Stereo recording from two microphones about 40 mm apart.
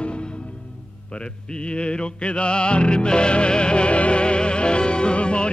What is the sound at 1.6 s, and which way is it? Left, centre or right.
Music, left.